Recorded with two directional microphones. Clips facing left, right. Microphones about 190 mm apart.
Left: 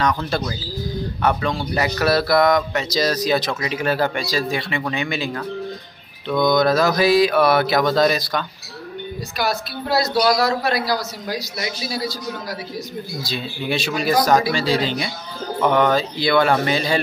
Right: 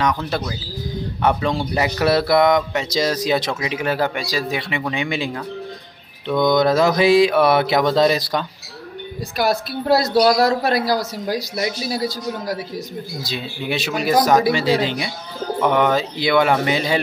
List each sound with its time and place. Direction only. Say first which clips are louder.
1.8 s speech: right 1 dB; 20° right (ahead or behind)
6.4 s speech: right 1 dB; 25° right (ahead or behind)
9.4 s speech: right 4 dB; 50° right (ahead or behind)
13.2 s speech: left 1 dB; 20° right (ahead or behind)